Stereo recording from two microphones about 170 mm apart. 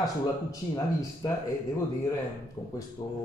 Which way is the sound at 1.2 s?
20° left (ahead or behind).